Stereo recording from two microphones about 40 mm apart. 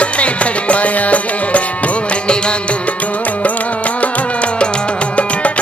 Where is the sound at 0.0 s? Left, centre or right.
Left.